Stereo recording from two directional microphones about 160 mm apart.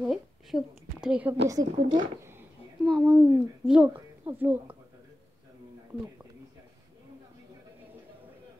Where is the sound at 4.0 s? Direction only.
15° right (ahead or behind).